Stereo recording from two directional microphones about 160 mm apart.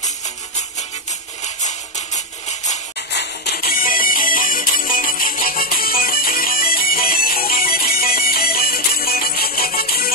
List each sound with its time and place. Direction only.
1.4 s music: 45° left (ahead or behind)
3.1 s music: 90° left; by 10.1 s 70° left (ahead or behind)